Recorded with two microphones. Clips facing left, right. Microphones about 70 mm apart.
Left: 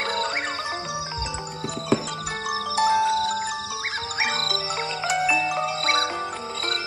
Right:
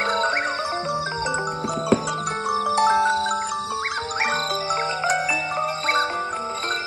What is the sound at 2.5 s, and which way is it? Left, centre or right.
Music, right.